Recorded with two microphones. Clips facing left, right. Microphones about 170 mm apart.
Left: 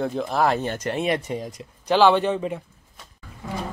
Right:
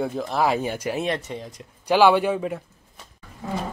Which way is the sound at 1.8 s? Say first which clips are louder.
Even; 10° right (ahead or behind).